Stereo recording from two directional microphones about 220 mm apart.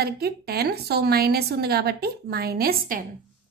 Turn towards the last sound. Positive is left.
turn(degrees=-40)  # may be behind; listen again after turning